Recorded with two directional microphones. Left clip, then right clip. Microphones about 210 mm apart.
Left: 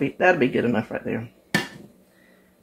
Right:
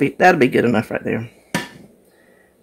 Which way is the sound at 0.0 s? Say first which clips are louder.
Right 6 dB; 60° right (ahead or behind).